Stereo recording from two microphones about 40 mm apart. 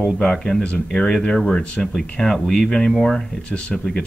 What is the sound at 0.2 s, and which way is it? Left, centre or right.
Speech, centre.